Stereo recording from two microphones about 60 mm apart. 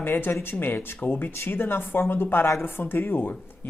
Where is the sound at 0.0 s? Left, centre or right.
Left.